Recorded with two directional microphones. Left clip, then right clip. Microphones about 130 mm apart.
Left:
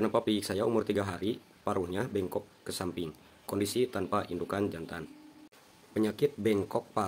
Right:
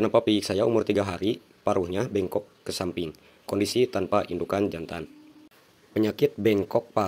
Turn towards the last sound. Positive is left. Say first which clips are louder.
# right 7 dB
turn(degrees=-25)  # may be behind; listen again after turning